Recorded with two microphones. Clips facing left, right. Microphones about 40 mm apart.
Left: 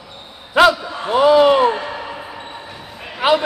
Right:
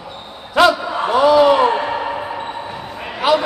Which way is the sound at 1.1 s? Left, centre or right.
Centre.